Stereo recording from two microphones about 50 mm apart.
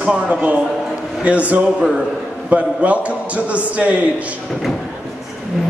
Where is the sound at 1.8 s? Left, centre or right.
Centre.